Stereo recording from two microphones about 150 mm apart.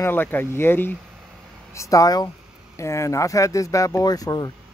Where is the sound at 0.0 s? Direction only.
15° left (ahead or behind).